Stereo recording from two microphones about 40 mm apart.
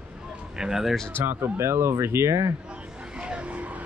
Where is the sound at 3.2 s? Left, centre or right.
Right.